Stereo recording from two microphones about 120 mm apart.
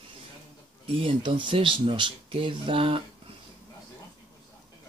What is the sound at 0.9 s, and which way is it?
Speech, 50° right (ahead or behind).